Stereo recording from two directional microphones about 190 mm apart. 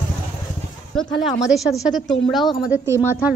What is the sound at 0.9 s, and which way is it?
Speech, centre (ahead or behind).